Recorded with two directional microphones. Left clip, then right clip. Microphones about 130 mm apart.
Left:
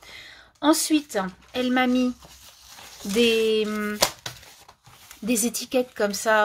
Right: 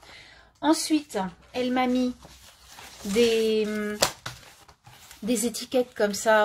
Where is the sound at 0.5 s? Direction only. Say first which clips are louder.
Left 3 dB; 35° left (ahead or behind).